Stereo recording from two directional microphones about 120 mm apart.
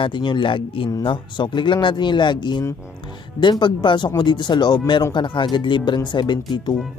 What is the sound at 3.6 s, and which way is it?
Speech, 40° left (ahead or behind).